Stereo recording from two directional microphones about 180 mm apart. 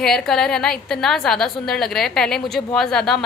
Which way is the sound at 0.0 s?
5° left (ahead or behind).